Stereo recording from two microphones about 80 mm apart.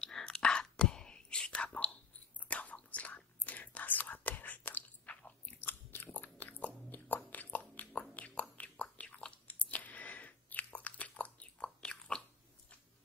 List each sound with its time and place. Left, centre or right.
0.0 s whispering: centre; by 6.0 s left
6.1 s biting: left
6.6 s chewing: left